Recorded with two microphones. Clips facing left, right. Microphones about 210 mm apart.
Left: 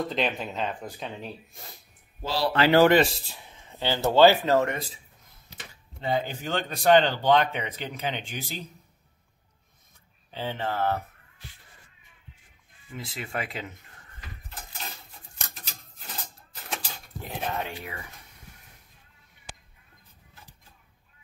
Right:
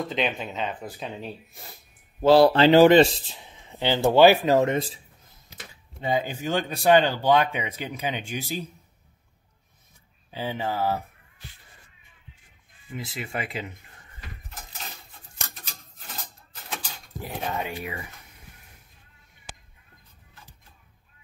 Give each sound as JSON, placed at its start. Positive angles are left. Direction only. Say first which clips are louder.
{"t": 0.0, "sound": "speech", "louder": "even", "side_deg": 0}
{"t": 2.2, "sound": "speech", "louder": "right 12 dB", "side_deg": -60}
{"t": 2.5, "sound": "a man's voice", "louder": "right 4 dB", "side_deg": -25}
{"t": 5.9, "sound": "a man's voice", "louder": "right 2 dB", "side_deg": -15}
{"t": 10.3, "sound": "a man's voice", "louder": "right 2 dB", "side_deg": -10}
{"t": 12.9, "sound": "speech", "louder": "right 1 dB", "side_deg": 0}
{"t": 17.4, "sound": "speech", "louder": "right 1 dB", "side_deg": -5}